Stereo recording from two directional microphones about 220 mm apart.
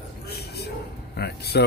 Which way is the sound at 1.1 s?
50° left (ahead or behind).